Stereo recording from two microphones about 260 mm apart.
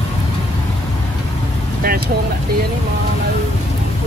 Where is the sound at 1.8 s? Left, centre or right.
Right.